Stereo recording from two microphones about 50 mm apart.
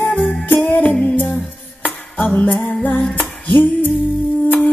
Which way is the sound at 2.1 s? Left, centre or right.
Left.